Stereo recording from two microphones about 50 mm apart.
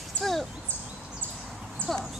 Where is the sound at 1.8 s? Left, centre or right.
Left.